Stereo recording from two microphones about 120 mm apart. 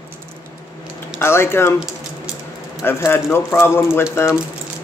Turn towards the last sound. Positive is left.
turn(degrees=20)  # may be behind; listen again after turning